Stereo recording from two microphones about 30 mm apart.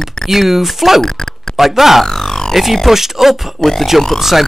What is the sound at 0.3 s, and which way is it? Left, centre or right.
Speech, centre.